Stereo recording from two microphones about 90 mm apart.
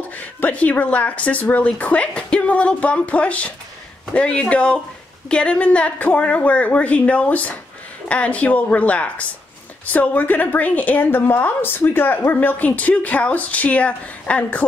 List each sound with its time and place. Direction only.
0.2 s a woman's voice: 15° left (ahead or behind)